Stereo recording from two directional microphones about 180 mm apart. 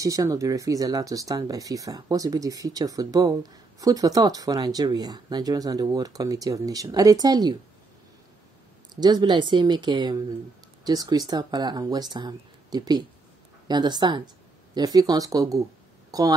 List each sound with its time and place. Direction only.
0.0 s speech: 20° right (ahead or behind)
9.0 s speech: 25° right (ahead or behind)